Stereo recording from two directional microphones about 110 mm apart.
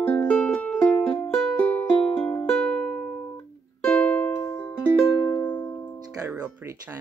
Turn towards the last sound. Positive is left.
turn(degrees=-25)  # may be behind; listen again after turning